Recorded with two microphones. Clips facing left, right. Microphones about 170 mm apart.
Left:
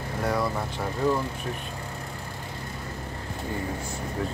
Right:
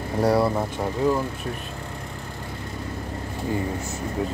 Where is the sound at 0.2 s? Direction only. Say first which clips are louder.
Right 7 dB; 35° right (ahead or behind).